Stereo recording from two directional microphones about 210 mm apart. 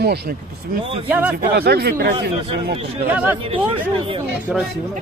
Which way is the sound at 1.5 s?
50° right (ahead or behind).